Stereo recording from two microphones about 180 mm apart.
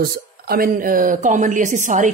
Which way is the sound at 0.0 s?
55° right (ahead or behind).